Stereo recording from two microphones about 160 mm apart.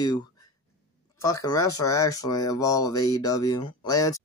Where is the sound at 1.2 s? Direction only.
20° left (ahead or behind).